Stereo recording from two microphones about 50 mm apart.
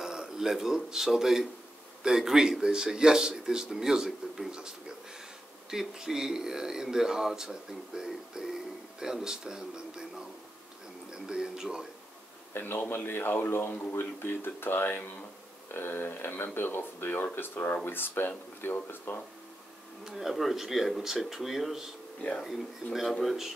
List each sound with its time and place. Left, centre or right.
0.0 s a man's voice: centre
12.5 s speech: left
20.1 s speech: centre
22.9 s speech: centre